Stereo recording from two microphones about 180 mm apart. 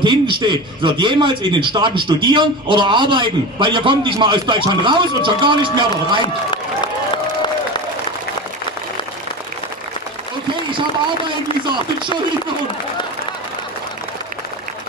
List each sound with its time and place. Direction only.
0.0 s a man's voice: 25° right (ahead or behind)